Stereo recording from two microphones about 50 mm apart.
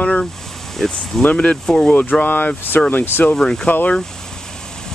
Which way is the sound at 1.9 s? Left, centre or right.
Left.